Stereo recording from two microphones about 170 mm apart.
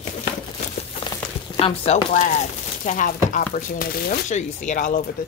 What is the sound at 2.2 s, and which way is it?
Speech, 50° left (ahead or behind).